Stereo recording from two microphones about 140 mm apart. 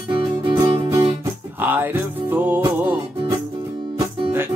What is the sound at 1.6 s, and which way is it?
Music, 15° right (ahead or behind).